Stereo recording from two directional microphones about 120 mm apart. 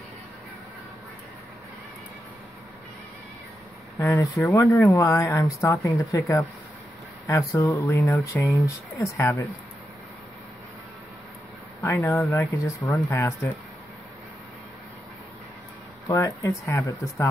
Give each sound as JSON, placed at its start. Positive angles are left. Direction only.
{"t": 4.0, "sound": "speech", "side_deg": 25}
{"t": 11.8, "sound": "speech", "side_deg": 20}
{"t": 16.1, "sound": "speech", "side_deg": 25}